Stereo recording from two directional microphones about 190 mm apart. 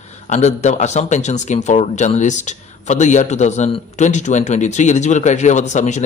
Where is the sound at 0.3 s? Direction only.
35° left (ahead or behind).